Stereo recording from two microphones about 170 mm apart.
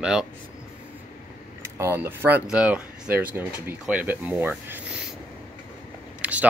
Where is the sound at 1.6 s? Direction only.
15° right (ahead or behind).